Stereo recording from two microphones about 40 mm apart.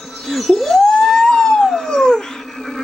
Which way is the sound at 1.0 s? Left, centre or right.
Centre.